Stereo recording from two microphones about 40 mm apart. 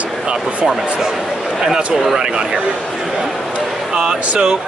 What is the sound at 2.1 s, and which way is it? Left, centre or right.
Speech, right.